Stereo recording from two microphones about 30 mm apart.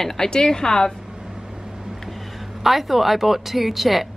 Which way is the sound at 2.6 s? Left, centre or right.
Centre.